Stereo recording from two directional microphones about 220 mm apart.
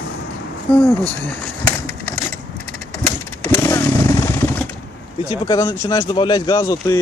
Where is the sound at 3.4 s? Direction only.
15° left (ahead or behind).